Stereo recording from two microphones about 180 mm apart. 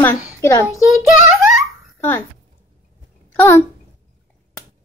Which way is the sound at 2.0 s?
15° left (ahead or behind).